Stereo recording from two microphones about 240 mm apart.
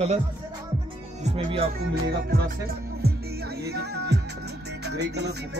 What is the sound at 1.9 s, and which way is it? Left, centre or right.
Music, right.